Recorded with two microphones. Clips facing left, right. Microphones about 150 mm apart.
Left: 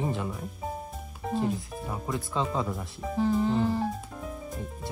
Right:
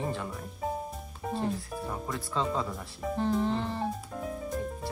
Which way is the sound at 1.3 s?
5° left (ahead or behind).